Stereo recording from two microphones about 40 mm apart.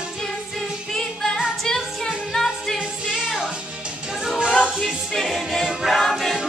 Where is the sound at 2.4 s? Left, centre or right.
Centre.